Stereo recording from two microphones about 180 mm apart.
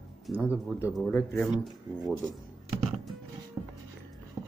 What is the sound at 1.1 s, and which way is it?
Speech, 5° left (ahead or behind).